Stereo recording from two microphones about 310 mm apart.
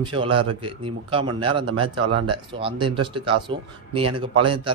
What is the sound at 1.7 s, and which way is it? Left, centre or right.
Speech, right.